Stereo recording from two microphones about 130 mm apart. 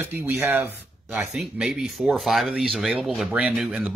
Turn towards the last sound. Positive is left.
turn(degrees=-5)  # may be behind; listen again after turning